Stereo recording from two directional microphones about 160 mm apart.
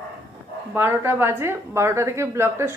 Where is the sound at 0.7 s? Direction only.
15° right (ahead or behind).